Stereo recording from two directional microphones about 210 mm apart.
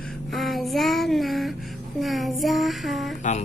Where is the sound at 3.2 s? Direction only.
35° left (ahead or behind).